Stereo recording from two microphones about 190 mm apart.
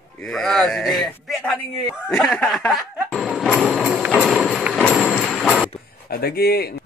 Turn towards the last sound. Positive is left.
turn(degrees=55)  # may be behind; listen again after turning